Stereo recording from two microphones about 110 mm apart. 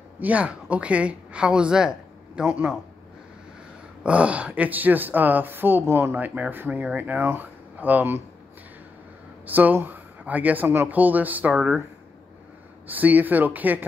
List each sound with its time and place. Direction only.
0.2 s speech: 15° right (ahead or behind)
4.0 s speech: 10° right (ahead or behind)
9.5 s speech: 15° right (ahead or behind)
12.8 s speech: 15° right (ahead or behind)